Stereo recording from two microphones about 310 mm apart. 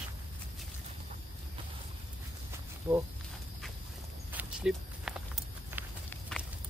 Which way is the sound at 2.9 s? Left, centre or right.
Centre.